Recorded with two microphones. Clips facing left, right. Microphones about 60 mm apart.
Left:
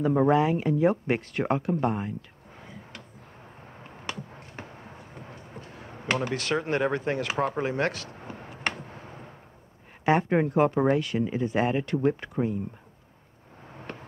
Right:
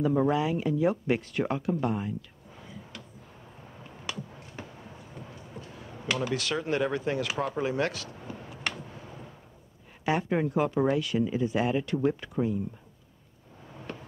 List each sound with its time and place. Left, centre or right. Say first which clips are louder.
0.0 s speech: left 3 dB; left
2.6 s a sound: even; left
10.0 s speech: left 4 dB; left
13.7 s vehicle: even; left